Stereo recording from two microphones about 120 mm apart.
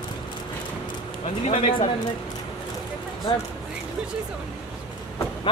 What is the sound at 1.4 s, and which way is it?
Speech, 60° left (ahead or behind).